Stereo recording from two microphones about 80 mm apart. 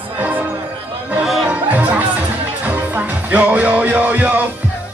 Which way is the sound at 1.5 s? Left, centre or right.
Centre.